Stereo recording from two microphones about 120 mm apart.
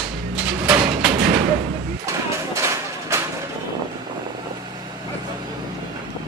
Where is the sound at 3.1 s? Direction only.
25° right (ahead or behind).